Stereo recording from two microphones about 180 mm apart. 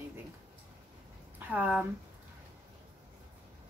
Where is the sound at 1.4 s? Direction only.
10° right (ahead or behind).